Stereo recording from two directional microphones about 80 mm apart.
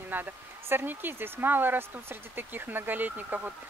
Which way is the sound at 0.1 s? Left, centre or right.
Right.